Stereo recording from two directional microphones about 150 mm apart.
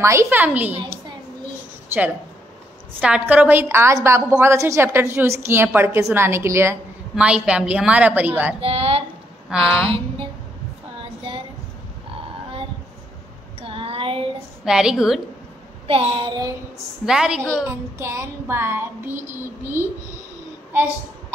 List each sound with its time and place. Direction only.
0.0 s a woman's voice: 20° right (ahead or behind)
3.0 s a woman's voice: 10° right (ahead or behind)
7.2 s a woman's voice: 5° right (ahead or behind)
8.5 s a woman's voice: 40° right (ahead or behind)
9.5 s a woman's voice: 5° right (ahead or behind)
9.8 s a sound: 35° right (ahead or behind)
13.6 s a sound: 40° right (ahead or behind)
14.6 s a woman's voice: 5° right (ahead or behind)
15.9 s a sound: 35° right (ahead or behind)
17.0 s a woman's voice: 5° right (ahead or behind)
17.6 s a woman's voice: 15° right (ahead or behind)